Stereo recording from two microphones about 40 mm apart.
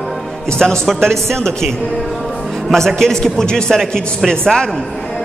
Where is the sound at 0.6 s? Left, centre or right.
Centre.